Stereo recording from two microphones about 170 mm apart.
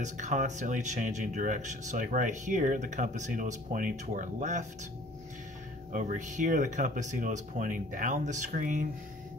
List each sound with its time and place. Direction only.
0.0 s speech: 45° right (ahead or behind)
5.9 s speech: 50° right (ahead or behind)